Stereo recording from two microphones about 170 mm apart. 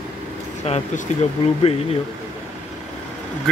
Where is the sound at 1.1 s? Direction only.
45° left (ahead or behind).